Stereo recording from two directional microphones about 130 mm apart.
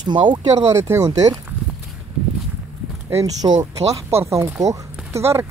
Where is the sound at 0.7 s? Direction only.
25° right (ahead or behind).